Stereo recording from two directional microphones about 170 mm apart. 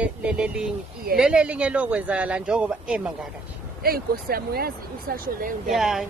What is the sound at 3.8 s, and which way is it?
Speech, 60° right (ahead or behind).